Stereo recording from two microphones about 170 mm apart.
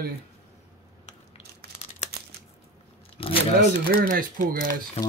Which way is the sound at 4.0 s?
55° right (ahead or behind).